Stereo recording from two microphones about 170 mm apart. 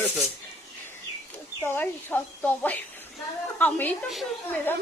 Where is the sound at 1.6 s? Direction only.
15° left (ahead or behind).